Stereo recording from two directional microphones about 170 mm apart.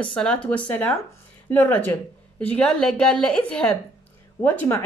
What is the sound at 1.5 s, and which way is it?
Speech, 10° left (ahead or behind).